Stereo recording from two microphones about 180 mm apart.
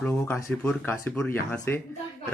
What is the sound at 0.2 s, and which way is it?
A man's voice, 15° left (ahead or behind).